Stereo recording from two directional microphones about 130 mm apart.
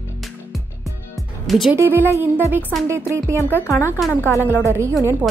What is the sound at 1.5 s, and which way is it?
Speech, centre (ahead or behind).